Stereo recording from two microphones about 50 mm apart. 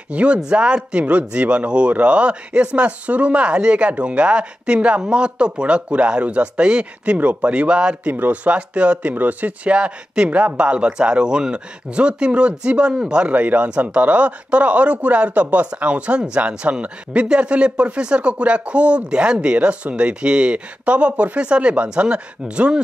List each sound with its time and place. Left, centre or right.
0.1 s speech: right
8.1 s speech: right
8.5 s speech: right
9.8 s speech: right
13.4 s speech: right